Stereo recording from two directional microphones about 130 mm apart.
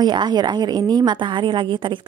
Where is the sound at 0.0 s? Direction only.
35° right (ahead or behind).